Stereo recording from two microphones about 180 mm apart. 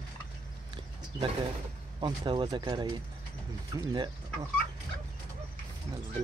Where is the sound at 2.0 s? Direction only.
25° right (ahead or behind).